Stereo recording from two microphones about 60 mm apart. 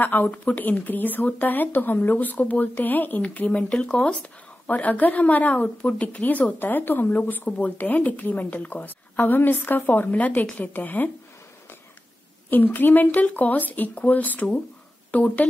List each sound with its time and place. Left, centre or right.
0.0 s speech: left
12.4 s speech: left